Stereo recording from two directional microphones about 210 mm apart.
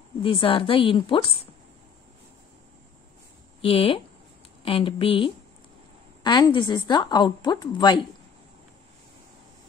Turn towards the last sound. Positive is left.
turn(degrees=20)  # may be behind; listen again after turning